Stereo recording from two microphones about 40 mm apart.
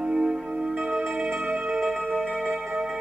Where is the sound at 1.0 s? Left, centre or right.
Centre.